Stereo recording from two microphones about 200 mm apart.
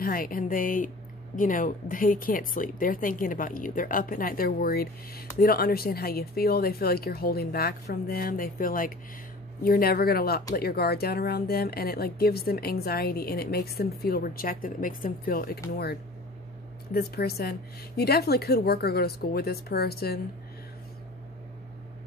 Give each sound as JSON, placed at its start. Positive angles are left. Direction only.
{"t": 0.0, "sound": "speech", "side_deg": 45}